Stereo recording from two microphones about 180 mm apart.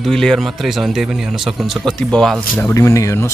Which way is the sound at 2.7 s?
15° left (ahead or behind).